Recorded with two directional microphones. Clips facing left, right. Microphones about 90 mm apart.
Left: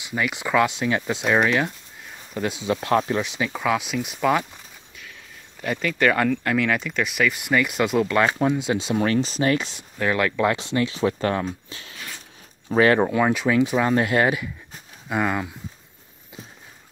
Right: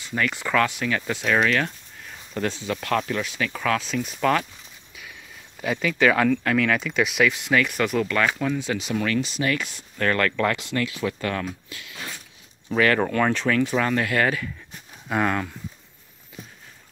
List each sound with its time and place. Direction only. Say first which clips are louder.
0.0 s speech: even; 10° left (ahead or behind)
2.6 s speech: left 7 dB; 25° left (ahead or behind)
5.6 s speech: right 1 dB; 5° right (ahead or behind)
7.4 s speech: left 1 dB; 10° left (ahead or behind)
9.9 s speech: left 1 dB; 10° left (ahead or behind)
13.1 s speech: left 2 dB; 10° left (ahead or behind)
15.0 s speech: even; 5° left (ahead or behind)